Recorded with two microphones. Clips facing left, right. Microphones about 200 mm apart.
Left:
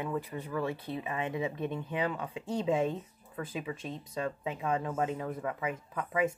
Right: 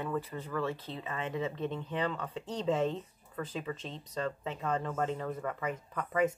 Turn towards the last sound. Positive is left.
turn(degrees=10)  # may be behind; listen again after turning